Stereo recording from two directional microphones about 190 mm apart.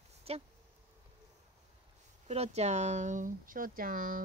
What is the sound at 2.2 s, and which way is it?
Speech, 35° right (ahead or behind).